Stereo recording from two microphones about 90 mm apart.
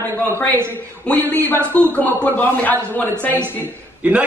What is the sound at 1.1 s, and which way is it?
Speech, 20° left (ahead or behind).